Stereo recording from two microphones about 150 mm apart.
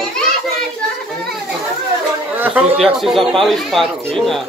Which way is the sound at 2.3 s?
10° right (ahead or behind).